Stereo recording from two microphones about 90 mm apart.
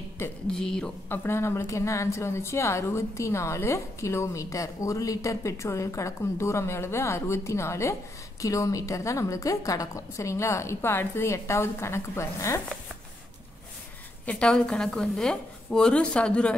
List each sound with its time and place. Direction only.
0.5 s a woman's voice: 5° left (ahead or behind)
1.0 s speech: 25° left (ahead or behind)
14.2 s a woman's voice: 10° left (ahead or behind)